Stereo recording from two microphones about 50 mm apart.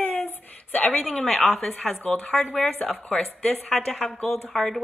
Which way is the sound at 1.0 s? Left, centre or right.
Centre.